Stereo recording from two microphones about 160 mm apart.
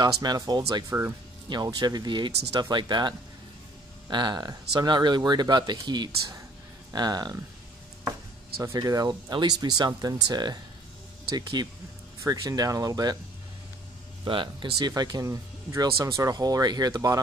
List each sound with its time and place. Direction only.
0.0 s speech: 25° right (ahead or behind)
8.7 s speech: 25° right (ahead or behind)
14.2 s speech: 30° right (ahead or behind)